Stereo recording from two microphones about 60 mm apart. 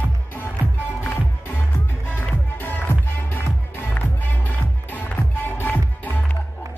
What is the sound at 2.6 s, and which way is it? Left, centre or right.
Music, left.